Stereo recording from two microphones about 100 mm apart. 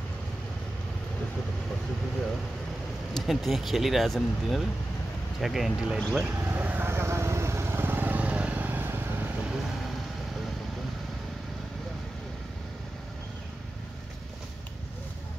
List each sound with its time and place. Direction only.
3.2 s speech: centre (ahead or behind)
6.3 s vehicle: 20° right (ahead or behind)